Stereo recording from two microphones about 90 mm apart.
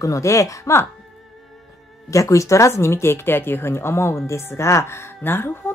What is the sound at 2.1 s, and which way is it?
A woman's voice, 35° left (ahead or behind).